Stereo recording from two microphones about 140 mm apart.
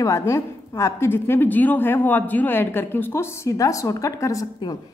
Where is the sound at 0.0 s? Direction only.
20° left (ahead or behind).